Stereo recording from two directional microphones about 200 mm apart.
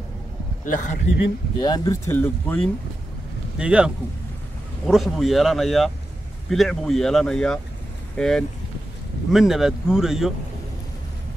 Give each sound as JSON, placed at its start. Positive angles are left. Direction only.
{"t": 0.7, "sound": "speech", "side_deg": 40}
{"t": 1.6, "sound": "speech", "side_deg": 20}
{"t": 3.5, "sound": "speech", "side_deg": -5}